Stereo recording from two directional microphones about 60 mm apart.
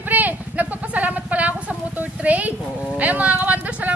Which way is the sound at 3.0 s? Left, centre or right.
Right.